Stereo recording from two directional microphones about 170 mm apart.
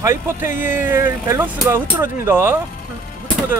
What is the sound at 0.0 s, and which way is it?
Speech, 15° right (ahead or behind).